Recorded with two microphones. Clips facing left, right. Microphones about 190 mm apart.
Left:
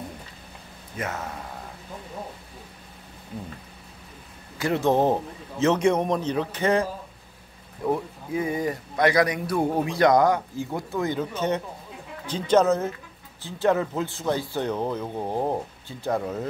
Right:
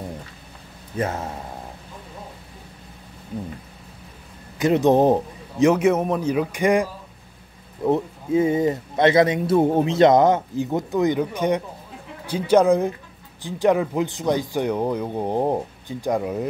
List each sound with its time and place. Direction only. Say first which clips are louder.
0.9 s speech: right 6 dB; 30° right (ahead or behind)
4.6 s speech: right 5 dB; 20° right (ahead or behind)
7.8 s speech: right 5 dB; 25° right (ahead or behind)